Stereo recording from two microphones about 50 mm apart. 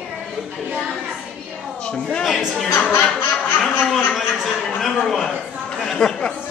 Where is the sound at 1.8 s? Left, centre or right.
Left.